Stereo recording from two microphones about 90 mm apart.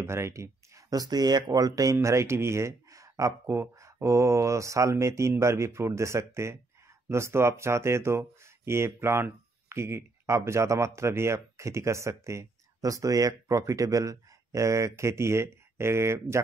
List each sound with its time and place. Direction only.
0.0 s speech: 30° right (ahead or behind)